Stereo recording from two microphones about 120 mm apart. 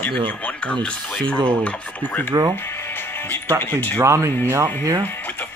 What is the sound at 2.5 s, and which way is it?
Music, 20° left (ahead or behind).